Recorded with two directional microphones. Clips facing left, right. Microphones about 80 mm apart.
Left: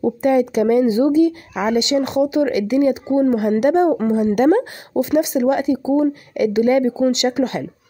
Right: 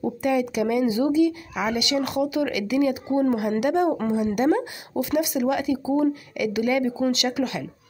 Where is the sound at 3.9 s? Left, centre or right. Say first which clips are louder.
Left 6 dB; left.